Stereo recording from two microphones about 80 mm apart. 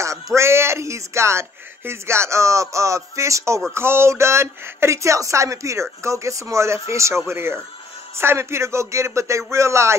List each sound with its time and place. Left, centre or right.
0.0 s speech: right